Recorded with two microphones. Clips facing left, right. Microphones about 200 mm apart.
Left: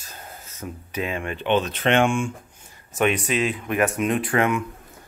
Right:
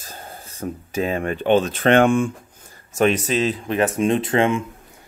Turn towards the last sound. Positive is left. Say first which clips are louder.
# right 3 dB
turn(degrees=-25)  # may be behind; listen again after turning